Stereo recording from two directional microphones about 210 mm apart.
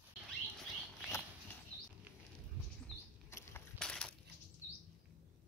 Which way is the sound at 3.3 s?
5° left (ahead or behind).